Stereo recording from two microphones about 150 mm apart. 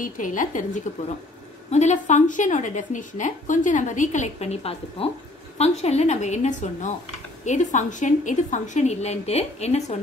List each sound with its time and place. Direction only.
0.0 s speech: 60° left (ahead or behind)
0.9 s a woman's voice: 50° left (ahead or behind)